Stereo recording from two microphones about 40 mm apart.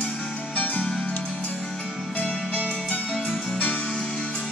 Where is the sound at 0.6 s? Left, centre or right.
Left.